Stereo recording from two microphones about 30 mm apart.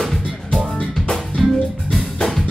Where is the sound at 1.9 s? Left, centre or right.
Centre.